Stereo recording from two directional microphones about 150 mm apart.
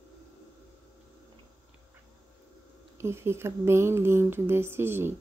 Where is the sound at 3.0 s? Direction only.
15° right (ahead or behind).